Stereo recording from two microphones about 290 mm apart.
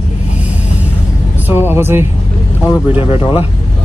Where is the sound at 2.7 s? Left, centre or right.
Centre.